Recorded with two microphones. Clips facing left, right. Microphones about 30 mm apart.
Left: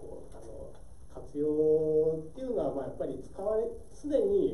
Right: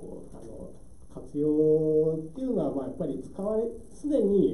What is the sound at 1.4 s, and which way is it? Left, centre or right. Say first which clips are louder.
Mantra: right 4 dB; centre.